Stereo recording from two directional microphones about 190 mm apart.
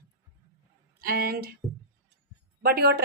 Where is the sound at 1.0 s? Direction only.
55° right (ahead or behind).